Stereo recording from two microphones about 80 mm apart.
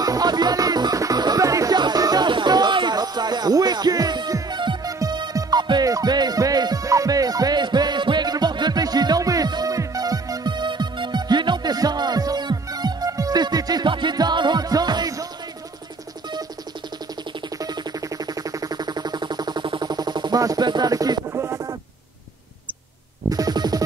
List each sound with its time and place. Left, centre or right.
0.0 s music: right
1.8 s music: right
2.2 s music: right
3.0 s music: right
4.8 s music: right
10.5 s music: right
13.8 s music: right
17.6 s music: right
20.9 s a sound: right
21.3 s music: right
23.3 s music: right